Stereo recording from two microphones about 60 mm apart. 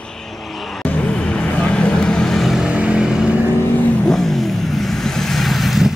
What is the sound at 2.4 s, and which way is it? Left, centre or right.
Vehicle, centre.